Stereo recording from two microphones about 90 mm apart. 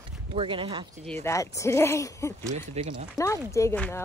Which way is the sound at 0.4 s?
75° right (ahead or behind).